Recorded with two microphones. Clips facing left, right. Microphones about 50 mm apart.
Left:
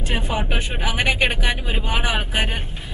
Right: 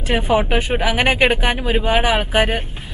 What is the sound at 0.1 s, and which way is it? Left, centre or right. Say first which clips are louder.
Speech: right 6 dB; right.